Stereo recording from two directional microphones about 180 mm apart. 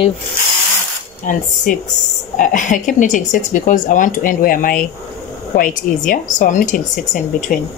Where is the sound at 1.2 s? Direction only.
45° left (ahead or behind).